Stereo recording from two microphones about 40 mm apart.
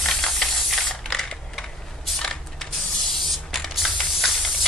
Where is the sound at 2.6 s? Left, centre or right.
Centre.